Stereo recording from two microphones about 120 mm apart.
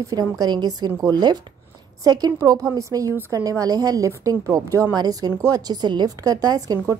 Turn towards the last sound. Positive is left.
turn(degrees=-30)  # may be behind; listen again after turning